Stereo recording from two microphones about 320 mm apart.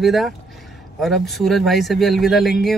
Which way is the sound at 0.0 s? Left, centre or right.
Centre.